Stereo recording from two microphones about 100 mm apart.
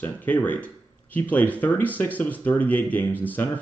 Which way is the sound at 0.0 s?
15° left (ahead or behind).